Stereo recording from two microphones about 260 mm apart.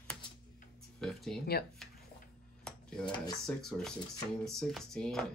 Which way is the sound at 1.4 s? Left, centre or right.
Left.